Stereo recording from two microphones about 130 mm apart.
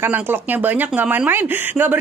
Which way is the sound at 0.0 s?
15° right (ahead or behind).